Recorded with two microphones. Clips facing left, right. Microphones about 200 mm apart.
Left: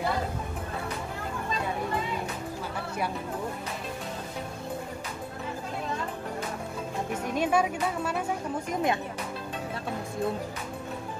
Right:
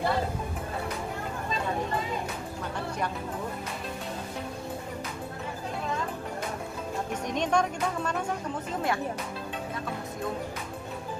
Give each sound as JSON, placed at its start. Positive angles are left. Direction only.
{"t": 7.2, "sound": "speech", "side_deg": 5}
{"t": 8.7, "sound": "speech", "side_deg": 20}